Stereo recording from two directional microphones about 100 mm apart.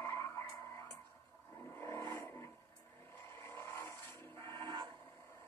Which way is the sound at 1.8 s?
25° left (ahead or behind).